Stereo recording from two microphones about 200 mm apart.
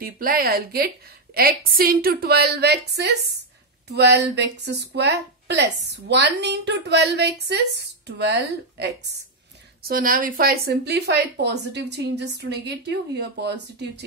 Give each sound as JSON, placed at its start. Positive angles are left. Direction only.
{"t": 0.0, "sound": "a woman's voice", "side_deg": -45}
{"t": 9.8, "sound": "a woman's voice", "side_deg": -45}